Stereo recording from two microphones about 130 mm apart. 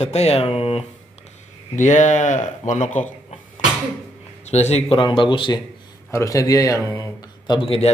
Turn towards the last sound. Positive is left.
turn(degrees=50)  # may be behind; listen again after turning